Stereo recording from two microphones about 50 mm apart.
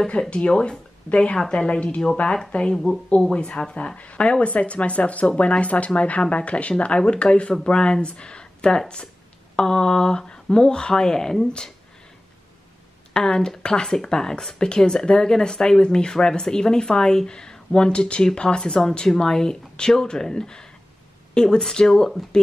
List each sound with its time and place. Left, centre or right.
0.0 s speech: centre
13.1 s speech: centre